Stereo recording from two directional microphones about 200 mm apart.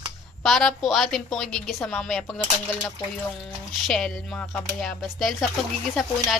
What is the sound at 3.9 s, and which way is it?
Speech, 5° left (ahead or behind).